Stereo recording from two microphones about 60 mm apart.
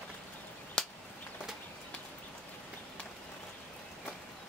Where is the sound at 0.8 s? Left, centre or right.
Centre.